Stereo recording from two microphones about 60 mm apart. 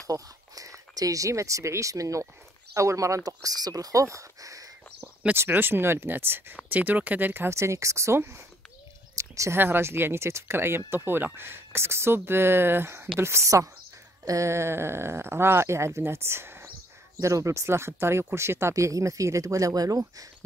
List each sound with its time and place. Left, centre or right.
0.0 s a sound: right
0.9 s speech: right
3.3 s speech: right
5.3 s speech: right
7.4 s speech: right
9.1 s a sound: right
9.6 s speech: right
17.2 s speech: right